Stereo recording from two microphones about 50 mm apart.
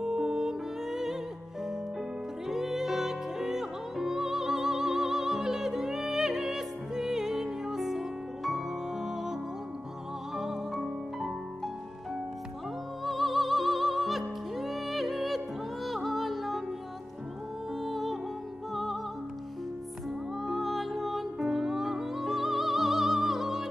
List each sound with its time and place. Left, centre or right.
0.0 s music: centre
2.4 s music: centre
13.0 s music: centre
17.8 s music: centre
20.4 s music: centre